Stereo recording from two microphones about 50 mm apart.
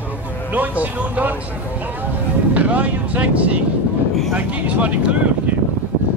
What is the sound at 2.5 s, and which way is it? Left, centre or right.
Speech, right.